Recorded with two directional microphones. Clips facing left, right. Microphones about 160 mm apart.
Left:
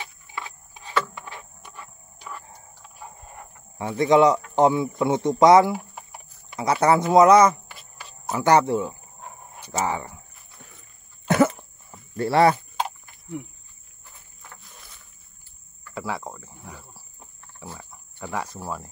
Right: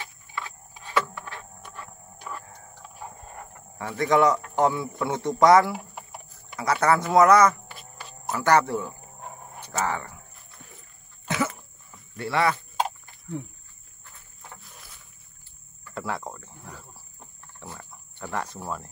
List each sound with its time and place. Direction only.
0.0 s wood: 20° left (ahead or behind)
1.1 s a sound: 20° left (ahead or behind)
3.7 s speech: 20° left (ahead or behind)
11.2 s a sound: 50° left (ahead or behind)
14.6 s rowboat: centre (ahead or behind)
15.9 s cricket: centre (ahead or behind)